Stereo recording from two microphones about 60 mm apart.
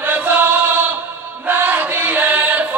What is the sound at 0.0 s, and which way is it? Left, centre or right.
Chant, right.